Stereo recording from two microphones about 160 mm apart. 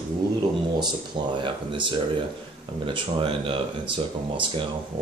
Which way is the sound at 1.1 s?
30° right (ahead or behind).